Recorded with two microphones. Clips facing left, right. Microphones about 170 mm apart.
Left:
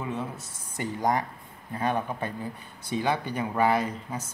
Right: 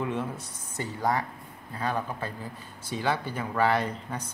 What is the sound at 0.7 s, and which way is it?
A man's voice, 15° left (ahead or behind).